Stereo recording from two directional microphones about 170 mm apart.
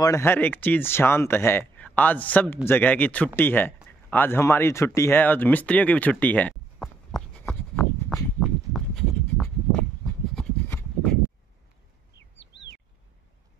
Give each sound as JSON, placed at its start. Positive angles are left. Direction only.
{"t": 0.0, "sound": "speech", "side_deg": 15}
{"t": 7.3, "sound": "a sound", "side_deg": 5}
{"t": 12.2, "sound": "bird", "side_deg": 90}